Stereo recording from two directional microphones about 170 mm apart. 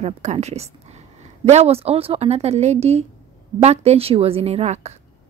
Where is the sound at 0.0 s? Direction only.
40° right (ahead or behind).